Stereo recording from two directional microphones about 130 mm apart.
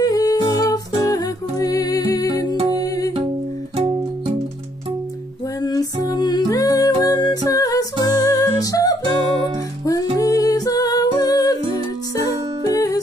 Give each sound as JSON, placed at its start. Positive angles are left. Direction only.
{"t": 0.0, "sound": "humming", "side_deg": 30}
{"t": 2.7, "sound": "music", "side_deg": 25}
{"t": 3.7, "sound": "music", "side_deg": -40}
{"t": 5.6, "sound": "music", "side_deg": 30}
{"t": 11.1, "sound": "humming", "side_deg": 30}
{"t": 12.7, "sound": "music", "side_deg": 25}